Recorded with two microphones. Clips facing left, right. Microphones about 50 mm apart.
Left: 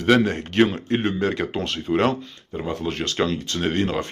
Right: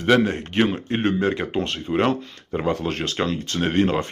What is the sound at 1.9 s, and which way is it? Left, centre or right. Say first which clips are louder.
Speech: left 1 dB; centre.